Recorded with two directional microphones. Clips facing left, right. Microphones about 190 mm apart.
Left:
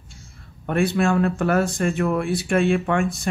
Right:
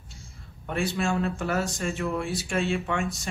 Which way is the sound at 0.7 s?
60° left (ahead or behind).